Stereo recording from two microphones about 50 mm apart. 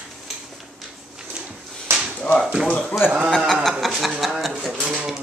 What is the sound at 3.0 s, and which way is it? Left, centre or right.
Speech, left.